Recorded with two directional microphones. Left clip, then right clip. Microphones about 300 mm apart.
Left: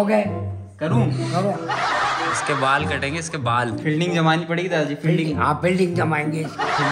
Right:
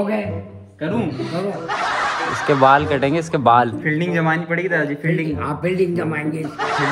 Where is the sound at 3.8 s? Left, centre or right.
Centre.